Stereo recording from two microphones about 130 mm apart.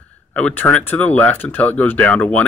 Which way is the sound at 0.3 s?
10° left (ahead or behind).